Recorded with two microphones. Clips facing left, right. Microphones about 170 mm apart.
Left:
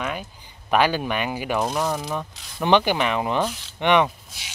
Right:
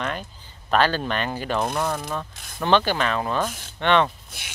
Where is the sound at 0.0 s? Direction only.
10° left (ahead or behind).